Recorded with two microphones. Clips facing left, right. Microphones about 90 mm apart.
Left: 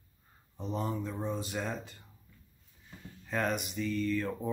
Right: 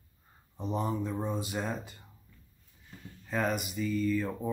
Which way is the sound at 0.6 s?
15° right (ahead or behind).